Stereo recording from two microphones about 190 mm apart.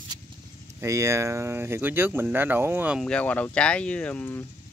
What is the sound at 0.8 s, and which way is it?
Speech, 15° right (ahead or behind).